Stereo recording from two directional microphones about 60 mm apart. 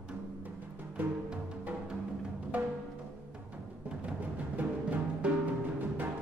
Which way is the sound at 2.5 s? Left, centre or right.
Right.